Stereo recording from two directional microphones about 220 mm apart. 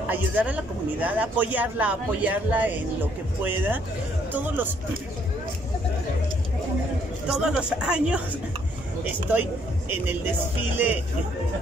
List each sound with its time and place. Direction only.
0.1 s speech: 5° right (ahead or behind)
7.2 s speech: centre (ahead or behind)
9.3 s speech: 10° right (ahead or behind)